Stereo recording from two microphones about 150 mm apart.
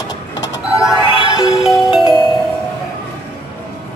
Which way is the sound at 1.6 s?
Centre (ahead or behind).